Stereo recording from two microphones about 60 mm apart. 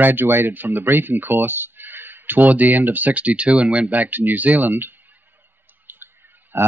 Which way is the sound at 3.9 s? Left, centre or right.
Right.